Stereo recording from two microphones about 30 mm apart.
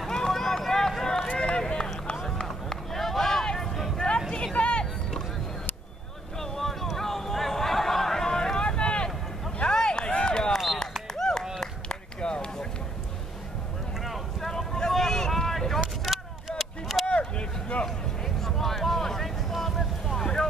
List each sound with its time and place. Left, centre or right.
0.3 s run: centre
1.3 s run: left
2.9 s a sound: centre
4.1 s a sound: left
4.6 s vehicle: left
6.4 s a sound: centre; by 9.1 s left
9.8 s run: left
11.1 s clapping: centre
11.6 s run: left
14.0 s boat: centre
14.8 s vehicle: centre
16.0 s vehicle: centre
17.0 s boat: left
17.8 s a sound: centre